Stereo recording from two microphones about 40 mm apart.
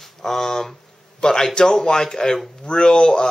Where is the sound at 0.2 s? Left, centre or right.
Centre.